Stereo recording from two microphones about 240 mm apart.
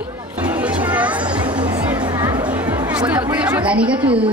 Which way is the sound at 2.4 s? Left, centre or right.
Centre.